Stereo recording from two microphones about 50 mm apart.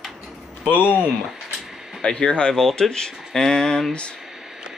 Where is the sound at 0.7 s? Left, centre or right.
Left.